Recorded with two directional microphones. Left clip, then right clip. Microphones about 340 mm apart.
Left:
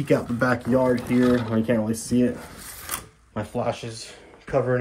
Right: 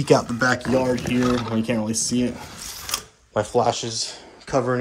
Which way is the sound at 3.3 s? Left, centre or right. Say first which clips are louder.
Right 7 dB; centre.